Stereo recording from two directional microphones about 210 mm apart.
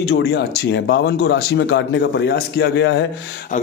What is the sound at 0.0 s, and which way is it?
Speech, 55° left (ahead or behind).